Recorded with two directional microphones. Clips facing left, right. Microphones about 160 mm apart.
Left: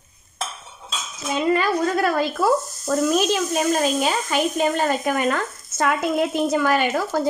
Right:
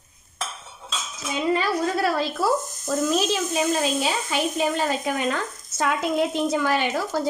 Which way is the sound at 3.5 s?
60° left (ahead or behind).